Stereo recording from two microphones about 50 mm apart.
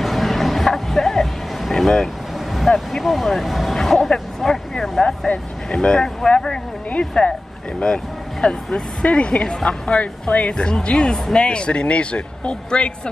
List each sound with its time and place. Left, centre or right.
0.0 s music: centre
2.7 s speech: centre